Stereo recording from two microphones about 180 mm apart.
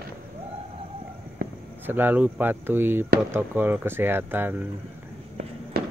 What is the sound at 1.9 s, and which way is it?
Speech, 10° right (ahead or behind).